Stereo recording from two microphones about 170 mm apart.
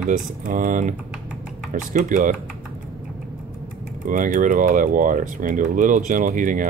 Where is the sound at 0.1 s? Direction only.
50° right (ahead or behind).